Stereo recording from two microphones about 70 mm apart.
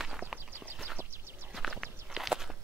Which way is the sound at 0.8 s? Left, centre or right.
Right.